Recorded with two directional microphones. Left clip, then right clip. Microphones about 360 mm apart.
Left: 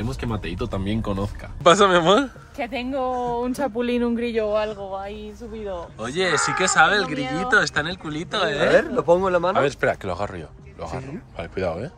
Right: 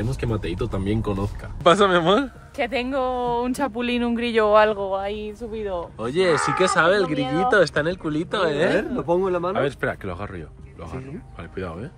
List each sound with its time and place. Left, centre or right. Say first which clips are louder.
1.0 s speech: even; centre
4.5 s speech: right 7 dB; right
5.9 s speech: right 1 dB; centre
8.7 s a man's voice: left 5 dB; left
9.6 s speech: left 3 dB; centre
11.5 s speech: left 6 dB; centre